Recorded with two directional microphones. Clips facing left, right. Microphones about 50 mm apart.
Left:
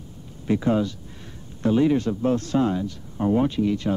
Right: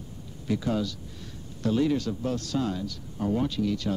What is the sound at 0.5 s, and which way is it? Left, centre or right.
Speech, left.